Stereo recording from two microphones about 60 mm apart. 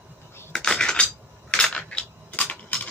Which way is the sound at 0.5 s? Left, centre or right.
Centre.